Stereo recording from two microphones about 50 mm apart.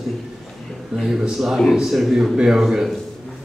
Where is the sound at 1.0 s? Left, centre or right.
Centre.